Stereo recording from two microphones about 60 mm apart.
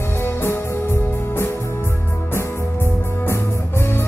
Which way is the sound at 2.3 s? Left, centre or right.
Left.